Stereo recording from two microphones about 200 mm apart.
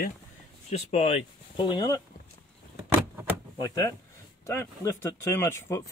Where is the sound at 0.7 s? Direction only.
30° left (ahead or behind).